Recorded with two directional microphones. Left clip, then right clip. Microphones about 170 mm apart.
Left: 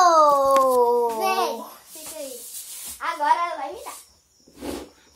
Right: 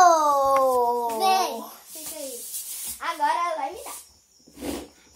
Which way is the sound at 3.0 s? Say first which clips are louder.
Left 2 dB; 35° right (ahead or behind).